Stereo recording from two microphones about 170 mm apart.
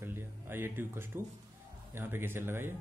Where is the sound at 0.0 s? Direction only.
15° right (ahead or behind).